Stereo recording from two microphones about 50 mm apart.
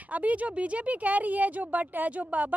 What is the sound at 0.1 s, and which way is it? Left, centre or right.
A woman's voice, right.